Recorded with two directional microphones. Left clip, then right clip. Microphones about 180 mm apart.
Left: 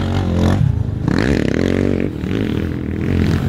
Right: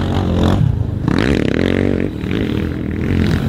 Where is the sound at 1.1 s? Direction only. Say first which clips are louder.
Right 1 dB; 30° left (ahead or behind).